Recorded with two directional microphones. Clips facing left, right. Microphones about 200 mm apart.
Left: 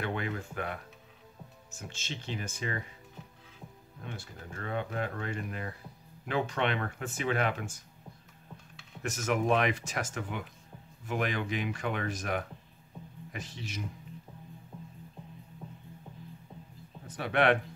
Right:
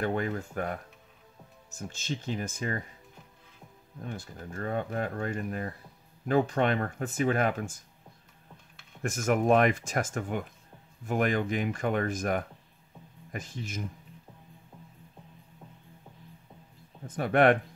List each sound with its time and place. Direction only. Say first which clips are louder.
0.0 s speech: right 5 dB; 45° right (ahead or behind)
2.0 s speech: right 6 dB; 45° right (ahead or behind)
4.0 s speech: right 4 dB; 40° right (ahead or behind)
9.0 s speech: right 4 dB; 50° right (ahead or behind)
17.1 s speech: right 4 dB; 50° right (ahead or behind)